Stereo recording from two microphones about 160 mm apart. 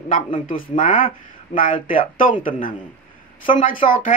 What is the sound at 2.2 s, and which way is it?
Speech, 60° left (ahead or behind).